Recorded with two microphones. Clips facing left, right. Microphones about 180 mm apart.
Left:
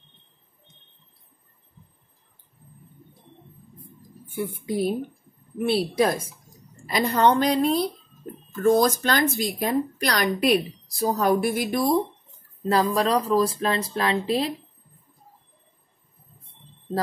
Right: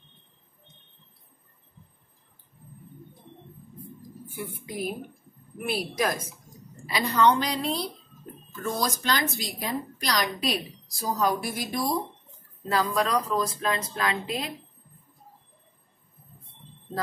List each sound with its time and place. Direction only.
4.4 s a woman's voice: 30° left (ahead or behind)
6.9 s a woman's voice: 50° left (ahead or behind)
12.6 s speech: 35° left (ahead or behind)